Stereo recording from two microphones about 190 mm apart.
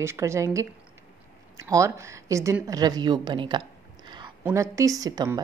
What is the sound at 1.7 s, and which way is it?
A woman's voice, 15° right (ahead or behind).